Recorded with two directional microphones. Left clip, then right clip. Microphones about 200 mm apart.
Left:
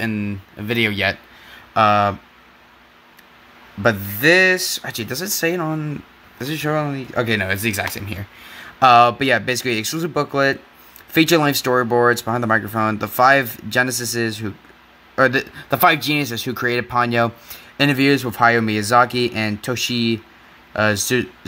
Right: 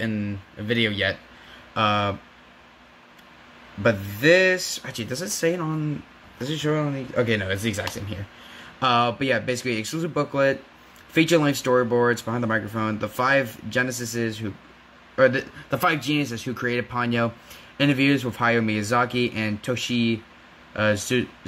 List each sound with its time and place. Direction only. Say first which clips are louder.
0.2 s speech: left 4 dB; 55° left (ahead or behind)
3.8 s speech: left 4 dB; 55° left (ahead or behind)